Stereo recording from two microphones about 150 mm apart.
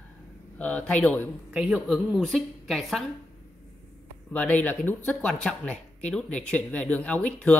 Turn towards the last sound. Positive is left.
turn(degrees=10)  # may be behind; listen again after turning